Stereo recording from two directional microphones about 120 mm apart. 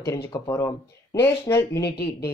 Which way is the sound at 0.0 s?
25° left (ahead or behind).